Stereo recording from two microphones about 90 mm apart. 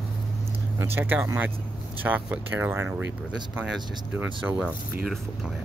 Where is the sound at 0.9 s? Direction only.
20° right (ahead or behind).